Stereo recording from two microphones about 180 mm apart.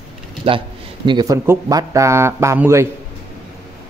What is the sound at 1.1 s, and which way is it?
Speech, 20° right (ahead or behind).